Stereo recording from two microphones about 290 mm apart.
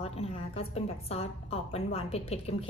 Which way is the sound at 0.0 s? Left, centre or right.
Left.